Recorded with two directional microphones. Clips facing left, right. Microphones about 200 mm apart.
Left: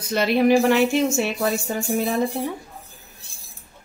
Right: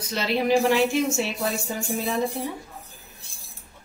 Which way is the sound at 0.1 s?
55° left (ahead or behind).